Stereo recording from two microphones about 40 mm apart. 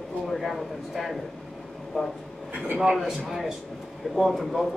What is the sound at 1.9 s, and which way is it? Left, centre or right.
Speech, centre.